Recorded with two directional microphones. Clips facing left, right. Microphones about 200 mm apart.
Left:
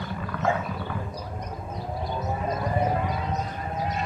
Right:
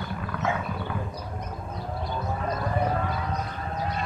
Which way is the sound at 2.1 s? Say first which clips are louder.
Left 1 dB; 20° left (ahead or behind).